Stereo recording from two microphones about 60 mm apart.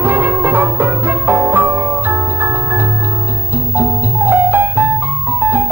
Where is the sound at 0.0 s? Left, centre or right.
Right.